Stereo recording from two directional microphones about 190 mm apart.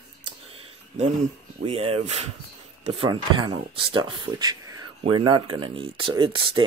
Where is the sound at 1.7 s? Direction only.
30° right (ahead or behind).